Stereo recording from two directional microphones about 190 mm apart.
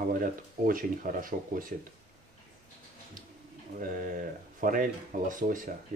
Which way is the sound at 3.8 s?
45° right (ahead or behind).